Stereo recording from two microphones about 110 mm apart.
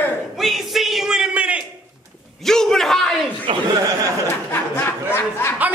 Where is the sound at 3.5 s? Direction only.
50° right (ahead or behind).